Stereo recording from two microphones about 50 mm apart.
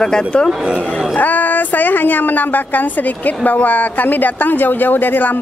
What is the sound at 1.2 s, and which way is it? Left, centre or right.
A woman's voice, left.